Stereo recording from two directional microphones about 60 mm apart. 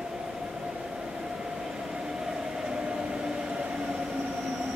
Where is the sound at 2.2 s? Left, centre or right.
Centre.